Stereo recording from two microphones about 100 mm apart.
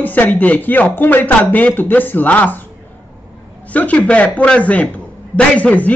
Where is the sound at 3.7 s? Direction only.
15° left (ahead or behind).